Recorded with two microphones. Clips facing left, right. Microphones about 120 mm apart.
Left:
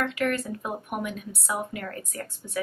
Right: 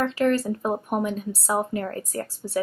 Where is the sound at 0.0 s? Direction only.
30° right (ahead or behind).